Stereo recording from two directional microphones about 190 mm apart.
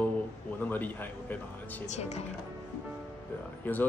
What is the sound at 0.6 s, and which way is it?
Speech, 10° left (ahead or behind).